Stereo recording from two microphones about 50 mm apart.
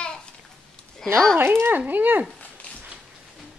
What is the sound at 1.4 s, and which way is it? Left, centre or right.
Speech, right.